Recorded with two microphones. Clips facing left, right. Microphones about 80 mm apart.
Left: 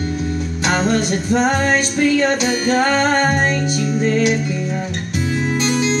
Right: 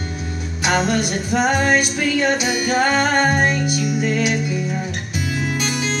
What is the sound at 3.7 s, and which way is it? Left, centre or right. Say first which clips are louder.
Music: left 3 dB; left.